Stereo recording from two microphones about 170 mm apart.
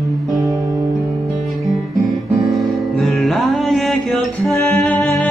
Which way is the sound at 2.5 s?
Centre (ahead or behind).